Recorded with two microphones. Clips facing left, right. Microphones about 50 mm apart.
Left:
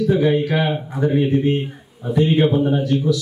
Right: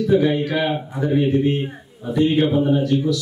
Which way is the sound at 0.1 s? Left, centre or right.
Centre.